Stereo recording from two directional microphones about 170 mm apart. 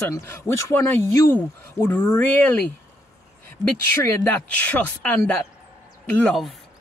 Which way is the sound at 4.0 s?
10° left (ahead or behind).